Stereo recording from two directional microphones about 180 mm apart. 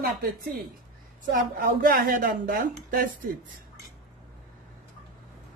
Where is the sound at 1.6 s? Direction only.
50° right (ahead or behind).